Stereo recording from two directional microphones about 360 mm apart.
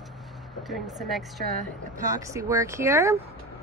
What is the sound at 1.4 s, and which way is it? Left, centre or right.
Speech, right.